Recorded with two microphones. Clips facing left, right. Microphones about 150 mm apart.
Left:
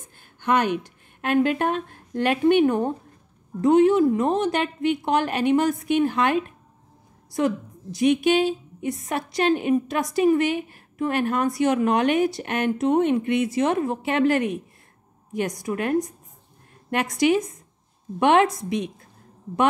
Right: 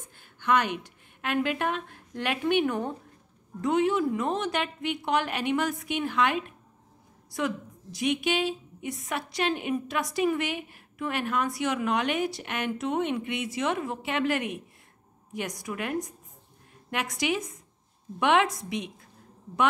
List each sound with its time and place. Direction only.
0.4 s a woman's voice: 45° left (ahead or behind)